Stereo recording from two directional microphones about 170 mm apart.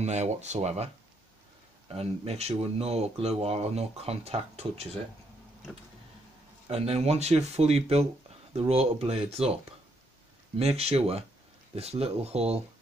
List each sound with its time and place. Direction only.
0.0 s speech: 40° right (ahead or behind)
1.9 s speech: 40° right (ahead or behind)
6.7 s speech: 40° right (ahead or behind)
10.6 s speech: 40° right (ahead or behind)